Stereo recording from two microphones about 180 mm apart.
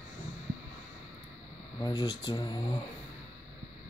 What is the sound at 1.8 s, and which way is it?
Speech, 20° left (ahead or behind).